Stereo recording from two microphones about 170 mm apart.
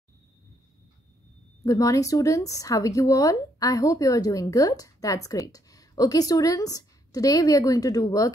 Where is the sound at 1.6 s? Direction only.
20° left (ahead or behind).